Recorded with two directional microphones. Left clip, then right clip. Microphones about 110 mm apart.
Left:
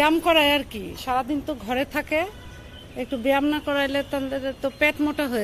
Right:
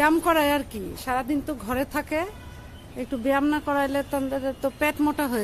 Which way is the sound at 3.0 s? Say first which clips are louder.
Left 2 dB; 5° right (ahead or behind).